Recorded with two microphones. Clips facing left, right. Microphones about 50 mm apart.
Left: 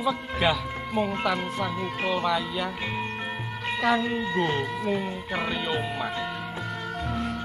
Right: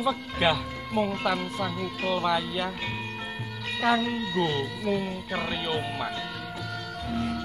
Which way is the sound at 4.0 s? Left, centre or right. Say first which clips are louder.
Left 1 dB; left.